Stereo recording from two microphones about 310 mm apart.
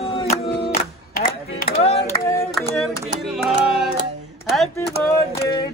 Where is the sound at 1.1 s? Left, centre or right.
Left.